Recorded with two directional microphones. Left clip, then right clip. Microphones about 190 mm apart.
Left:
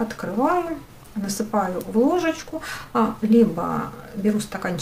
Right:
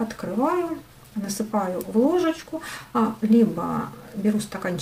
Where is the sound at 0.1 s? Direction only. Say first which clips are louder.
Left 3 dB; 10° left (ahead or behind).